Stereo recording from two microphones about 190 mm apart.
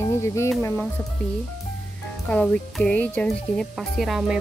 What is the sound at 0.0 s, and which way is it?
Music, 15° left (ahead or behind).